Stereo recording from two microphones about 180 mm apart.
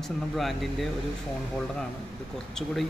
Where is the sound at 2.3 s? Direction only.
Centre (ahead or behind).